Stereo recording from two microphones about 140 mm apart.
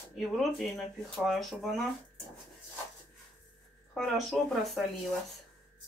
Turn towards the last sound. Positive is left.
turn(degrees=0)  # may be behind; listen again after turning